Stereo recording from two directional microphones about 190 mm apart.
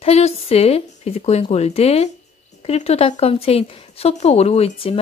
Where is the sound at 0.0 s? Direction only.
35° left (ahead or behind).